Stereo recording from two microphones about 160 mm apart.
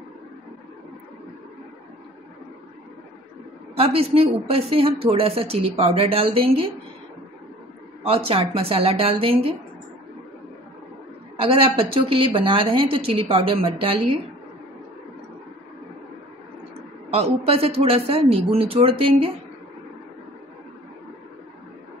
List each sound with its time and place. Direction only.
3.7 s a woman's voice: 35° right (ahead or behind)
8.0 s a woman's voice: 35° right (ahead or behind)
11.3 s a woman's voice: 35° right (ahead or behind)
17.1 s a woman's voice: 40° right (ahead or behind)